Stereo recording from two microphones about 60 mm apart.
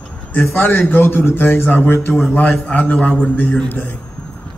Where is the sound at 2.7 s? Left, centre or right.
Left.